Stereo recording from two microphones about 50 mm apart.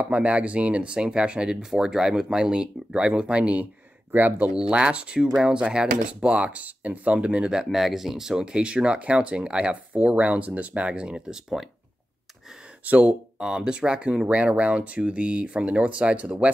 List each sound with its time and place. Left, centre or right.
0.0 s speech: right
4.1 s speech: right
4.6 s speech: right
11.6 s speech: centre
12.8 s speech: right
13.4 s speech: centre